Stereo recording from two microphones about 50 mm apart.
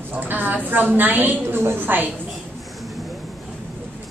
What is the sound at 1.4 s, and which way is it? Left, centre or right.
Speech, right.